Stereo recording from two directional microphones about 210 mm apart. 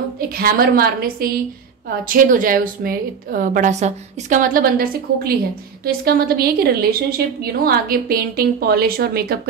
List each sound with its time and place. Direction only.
0.3 s a woman's voice: 45° right (ahead or behind)